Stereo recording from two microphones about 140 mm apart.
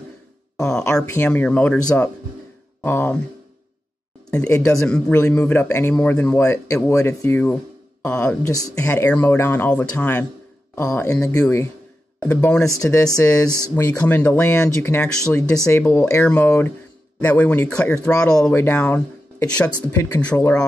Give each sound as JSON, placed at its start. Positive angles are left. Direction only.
{"t": 0.6, "sound": "speech", "side_deg": 5}
{"t": 4.6, "sound": "speech", "side_deg": 10}
{"t": 6.4, "sound": "speech", "side_deg": 20}
{"t": 8.5, "sound": "speech", "side_deg": 25}
{"t": 8.9, "sound": "speech", "side_deg": 10}
{"t": 12.2, "sound": "speech", "side_deg": 15}
{"t": 12.6, "sound": "speech", "side_deg": 25}
{"t": 15.7, "sound": "speech", "side_deg": 20}
{"t": 19.9, "sound": "speech", "side_deg": 20}